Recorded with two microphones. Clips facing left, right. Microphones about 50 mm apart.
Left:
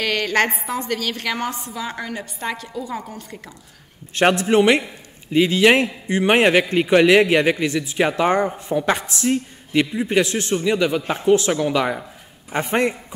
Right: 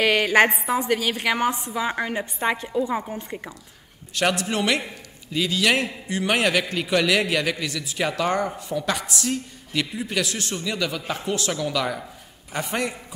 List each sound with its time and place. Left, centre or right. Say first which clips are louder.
0.0 s a woman's voice: right 2 dB; centre
4.1 s a man's voice: left 7 dB; left